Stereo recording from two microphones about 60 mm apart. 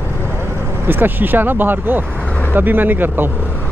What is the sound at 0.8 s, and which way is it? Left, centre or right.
Speech, right.